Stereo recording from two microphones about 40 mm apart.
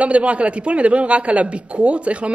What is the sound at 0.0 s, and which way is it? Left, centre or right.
Speech, right.